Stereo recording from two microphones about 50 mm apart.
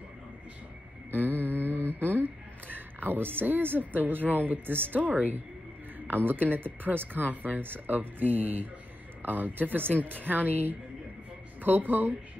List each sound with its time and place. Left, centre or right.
1.4 s a sound: left
1.9 s a woman's voice: right
11.6 s speech: right